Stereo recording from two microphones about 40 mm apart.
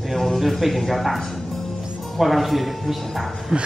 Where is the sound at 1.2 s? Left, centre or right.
Centre.